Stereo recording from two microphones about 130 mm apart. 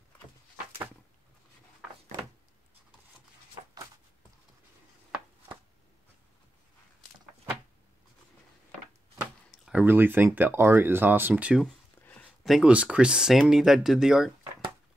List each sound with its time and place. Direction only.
9.5 s speech: 10° right (ahead or behind)
11.6 s a sound: 5° left (ahead or behind)
12.5 s speech: 10° right (ahead or behind)